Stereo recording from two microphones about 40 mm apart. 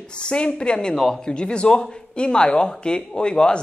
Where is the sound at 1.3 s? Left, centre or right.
Left.